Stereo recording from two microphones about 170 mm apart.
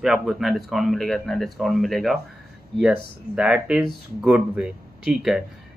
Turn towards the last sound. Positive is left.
turn(degrees=-5)  # may be behind; listen again after turning